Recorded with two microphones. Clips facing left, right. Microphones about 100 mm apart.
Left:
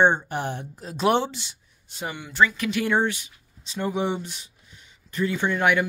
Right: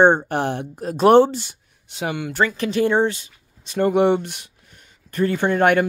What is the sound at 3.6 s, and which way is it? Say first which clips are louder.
Speech: right 9 dB; 60° right (ahead or behind).